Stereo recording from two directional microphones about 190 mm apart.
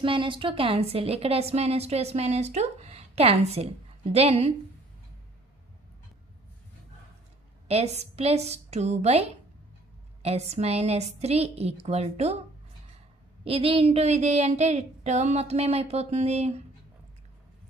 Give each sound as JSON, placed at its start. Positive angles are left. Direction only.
{"t": 0.0, "sound": "a woman's voice", "side_deg": -25}
{"t": 7.6, "sound": "a woman's voice", "side_deg": -35}
{"t": 13.4, "sound": "a woman's voice", "side_deg": -30}